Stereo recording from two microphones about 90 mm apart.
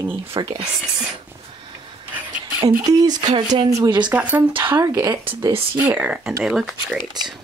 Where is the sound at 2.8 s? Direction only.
45° right (ahead or behind).